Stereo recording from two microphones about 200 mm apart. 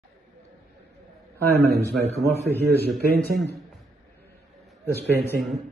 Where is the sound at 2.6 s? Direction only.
50° right (ahead or behind).